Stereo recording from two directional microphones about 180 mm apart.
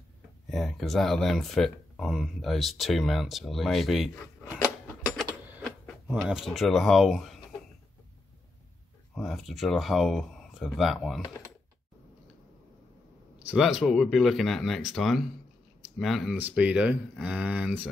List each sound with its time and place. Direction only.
0.5 s speech: centre (ahead or behind)
5.6 s speech: centre (ahead or behind)
9.1 s speech: centre (ahead or behind)
13.5 s speech: centre (ahead or behind)